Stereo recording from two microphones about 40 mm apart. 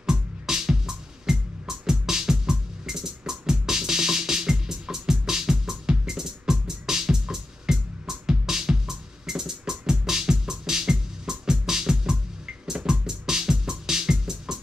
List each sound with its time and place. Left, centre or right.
0.1 s music: centre